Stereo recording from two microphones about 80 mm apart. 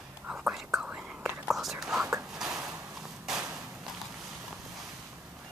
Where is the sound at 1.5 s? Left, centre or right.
Centre.